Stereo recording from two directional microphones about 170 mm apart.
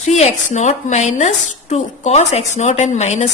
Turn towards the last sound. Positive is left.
turn(degrees=40)  # may be behind; listen again after turning